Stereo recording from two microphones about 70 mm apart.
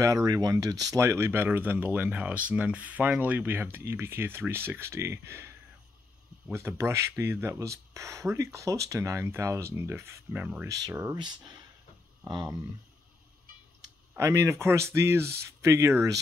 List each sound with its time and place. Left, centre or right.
0.0 s speech: right
1.0 s speech: right
6.5 s speech: right
10.3 s speech: right
10.7 s speech: right
11.1 s speech: right
14.2 s speech: right